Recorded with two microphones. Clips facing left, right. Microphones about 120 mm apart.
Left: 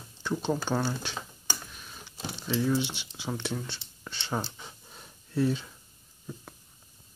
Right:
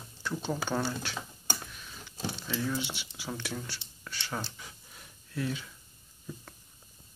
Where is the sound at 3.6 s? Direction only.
25° left (ahead or behind).